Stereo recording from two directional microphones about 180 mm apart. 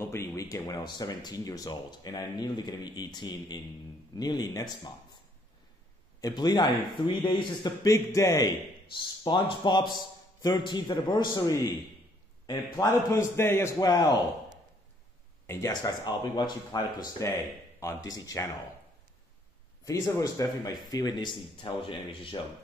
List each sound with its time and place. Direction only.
0.0 s speech: 15° left (ahead or behind)
6.2 s speech: 20° left (ahead or behind)
15.4 s speech: 15° left (ahead or behind)
19.8 s speech: 20° left (ahead or behind)